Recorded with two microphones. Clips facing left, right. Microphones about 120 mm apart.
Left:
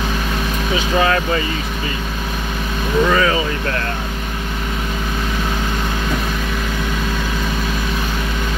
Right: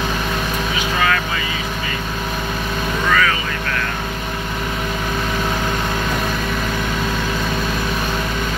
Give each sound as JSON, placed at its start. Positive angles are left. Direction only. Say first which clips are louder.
{"t": 1.0, "sound": "speech", "louder": "left 3 dB", "side_deg": 30}
{"t": 3.1, "sound": "speech", "louder": "right 1 dB", "side_deg": 25}